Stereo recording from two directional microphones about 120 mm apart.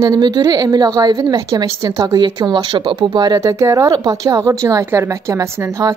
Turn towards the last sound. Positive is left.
turn(degrees=-30)  # may be behind; listen again after turning